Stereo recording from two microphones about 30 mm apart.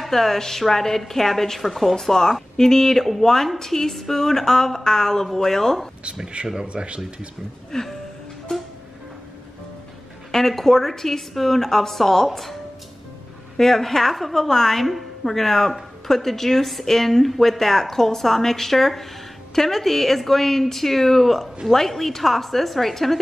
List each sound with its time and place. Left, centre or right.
0.0 s a woman's voice: centre
2.0 s a woman's voice: centre
6.2 s speech: right
7.7 s speech: centre
10.3 s a woman's voice: centre
13.6 s a woman's voice: centre